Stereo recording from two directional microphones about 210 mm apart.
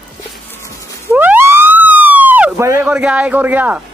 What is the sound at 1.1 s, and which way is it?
Police car, 10° right (ahead or behind).